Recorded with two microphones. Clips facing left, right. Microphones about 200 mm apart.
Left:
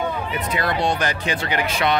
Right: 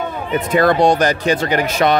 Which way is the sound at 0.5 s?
45° right (ahead or behind).